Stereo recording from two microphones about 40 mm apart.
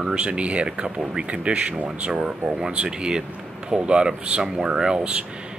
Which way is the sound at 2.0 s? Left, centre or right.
Right.